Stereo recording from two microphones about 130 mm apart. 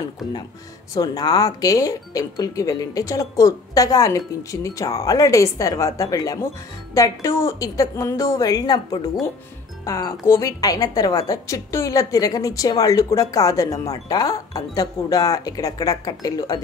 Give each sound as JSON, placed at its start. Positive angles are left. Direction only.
{"t": 0.9, "sound": "a woman's voice", "side_deg": 30}